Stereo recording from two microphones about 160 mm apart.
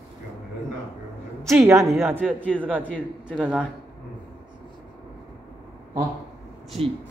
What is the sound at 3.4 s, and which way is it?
Speech, 5° right (ahead or behind).